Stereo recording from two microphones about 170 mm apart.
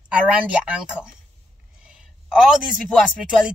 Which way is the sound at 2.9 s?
Centre (ahead or behind).